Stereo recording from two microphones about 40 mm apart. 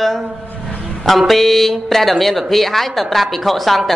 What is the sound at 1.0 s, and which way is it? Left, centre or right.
Speech, centre.